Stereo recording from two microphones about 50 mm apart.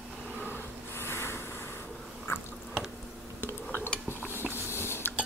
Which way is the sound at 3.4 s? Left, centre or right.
Left.